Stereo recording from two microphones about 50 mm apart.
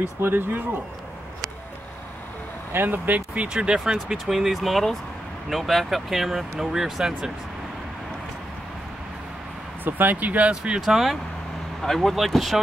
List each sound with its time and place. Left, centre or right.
0.2 s speech: right
2.7 s speech: right
3.3 s speech: centre
9.8 s speech: right
10.5 s speech: centre
10.9 s speech: centre
11.8 s speech: centre